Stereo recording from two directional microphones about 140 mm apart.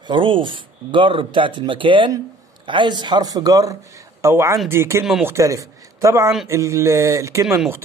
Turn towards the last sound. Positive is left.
turn(degrees=-20)  # may be behind; listen again after turning